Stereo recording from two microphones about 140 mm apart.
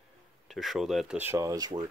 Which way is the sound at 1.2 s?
20° right (ahead or behind).